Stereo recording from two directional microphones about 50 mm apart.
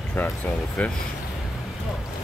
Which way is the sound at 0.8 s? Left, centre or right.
Left.